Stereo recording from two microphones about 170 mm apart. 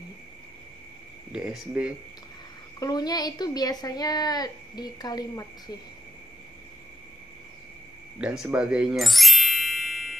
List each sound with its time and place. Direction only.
1.3 s speech: 5° right (ahead or behind)
2.8 s speech: 20° left (ahead or behind)
8.2 s speech: 5° right (ahead or behind)
8.5 s music: 5° right (ahead or behind)